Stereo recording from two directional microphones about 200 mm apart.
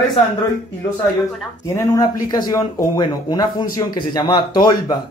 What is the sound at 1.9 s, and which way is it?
Speech, 20° left (ahead or behind).